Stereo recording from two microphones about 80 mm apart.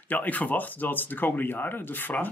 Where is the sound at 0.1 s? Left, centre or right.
Centre.